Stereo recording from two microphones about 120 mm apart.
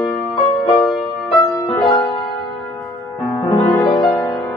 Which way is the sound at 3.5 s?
30° left (ahead or behind).